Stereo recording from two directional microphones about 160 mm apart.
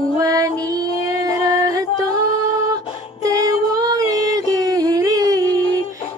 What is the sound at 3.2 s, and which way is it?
Music, 20° right (ahead or behind).